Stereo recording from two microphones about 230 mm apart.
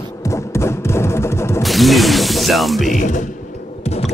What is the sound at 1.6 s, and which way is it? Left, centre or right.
Speech, centre.